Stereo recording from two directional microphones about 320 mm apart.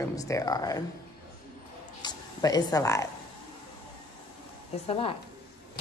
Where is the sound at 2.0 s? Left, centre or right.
Centre.